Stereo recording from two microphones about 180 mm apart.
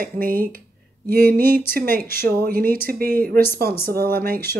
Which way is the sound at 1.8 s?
55° right (ahead or behind).